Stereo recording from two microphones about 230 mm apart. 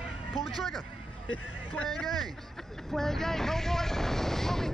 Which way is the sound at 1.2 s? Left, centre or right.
Left.